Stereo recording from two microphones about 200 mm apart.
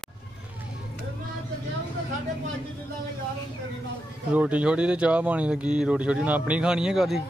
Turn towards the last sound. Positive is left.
turn(degrees=0)  # may be behind; listen again after turning